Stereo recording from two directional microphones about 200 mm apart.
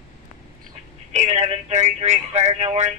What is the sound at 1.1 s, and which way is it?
Speech, 35° right (ahead or behind).